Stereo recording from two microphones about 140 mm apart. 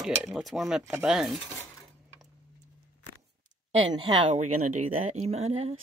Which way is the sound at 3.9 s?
45° right (ahead or behind).